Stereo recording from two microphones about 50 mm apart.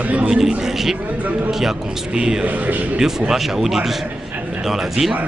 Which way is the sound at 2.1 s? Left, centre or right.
Centre.